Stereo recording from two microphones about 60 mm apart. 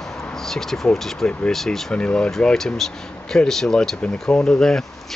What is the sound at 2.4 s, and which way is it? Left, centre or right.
Speech, centre.